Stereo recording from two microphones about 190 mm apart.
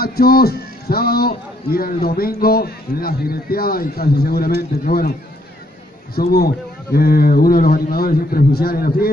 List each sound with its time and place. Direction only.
0.0 s a man's voice: 55° left (ahead or behind)
6.1 s a man's voice: 55° left (ahead or behind)